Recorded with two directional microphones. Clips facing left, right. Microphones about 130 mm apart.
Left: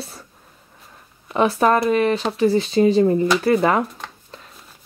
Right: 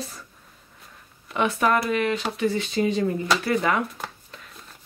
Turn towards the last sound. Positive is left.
turn(degrees=35)  # may be behind; listen again after turning